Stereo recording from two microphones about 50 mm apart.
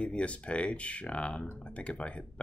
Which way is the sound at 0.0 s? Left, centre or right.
Left.